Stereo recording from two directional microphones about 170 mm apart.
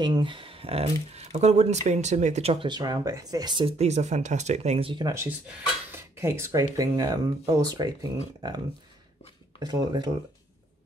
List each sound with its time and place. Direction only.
0.0 s speech: 30° right (ahead or behind)
5.0 s speech: 15° right (ahead or behind)
9.6 s speech: 25° right (ahead or behind)